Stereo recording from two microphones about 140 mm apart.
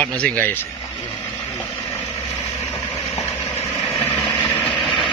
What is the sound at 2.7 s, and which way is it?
Vehicle, 40° left (ahead or behind).